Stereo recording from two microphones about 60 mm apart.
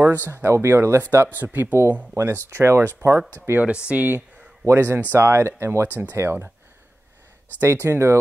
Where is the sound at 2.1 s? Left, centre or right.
Right.